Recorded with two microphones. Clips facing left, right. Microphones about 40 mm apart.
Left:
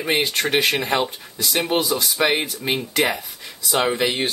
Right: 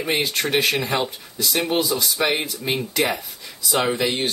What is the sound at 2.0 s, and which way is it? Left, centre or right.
Speech, centre.